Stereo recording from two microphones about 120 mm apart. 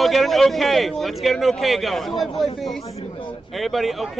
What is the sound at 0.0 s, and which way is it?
A man's voice, centre (ahead or behind).